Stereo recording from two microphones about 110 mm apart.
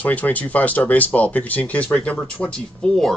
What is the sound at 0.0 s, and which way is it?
Speech, 15° left (ahead or behind).